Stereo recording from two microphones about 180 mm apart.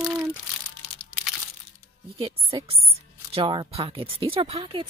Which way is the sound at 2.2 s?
30° right (ahead or behind).